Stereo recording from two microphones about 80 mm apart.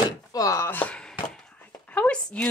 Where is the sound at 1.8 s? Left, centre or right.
Centre.